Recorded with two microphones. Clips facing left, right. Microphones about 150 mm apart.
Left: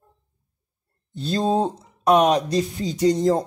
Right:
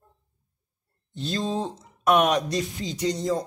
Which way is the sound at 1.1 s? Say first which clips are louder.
Left 6 dB; 40° left (ahead or behind).